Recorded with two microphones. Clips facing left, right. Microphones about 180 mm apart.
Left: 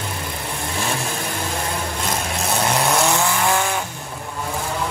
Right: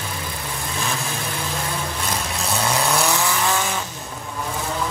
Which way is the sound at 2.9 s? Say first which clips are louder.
Left 2 dB; 15° left (ahead or behind).